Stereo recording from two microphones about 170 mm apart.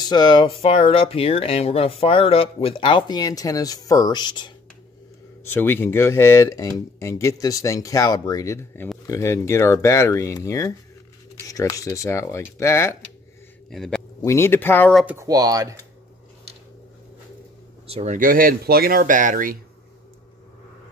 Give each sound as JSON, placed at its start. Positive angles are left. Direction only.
{"t": 0.1, "sound": "speech", "side_deg": 25}
{"t": 5.5, "sound": "speech", "side_deg": 15}
{"t": 13.7, "sound": "speech", "side_deg": 5}
{"t": 14.2, "sound": "speech", "side_deg": 15}
{"t": 15.0, "sound": "speech", "side_deg": -20}
{"t": 17.8, "sound": "speech", "side_deg": -40}